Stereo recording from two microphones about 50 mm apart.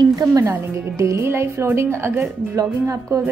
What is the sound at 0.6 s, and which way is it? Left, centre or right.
Speech, right.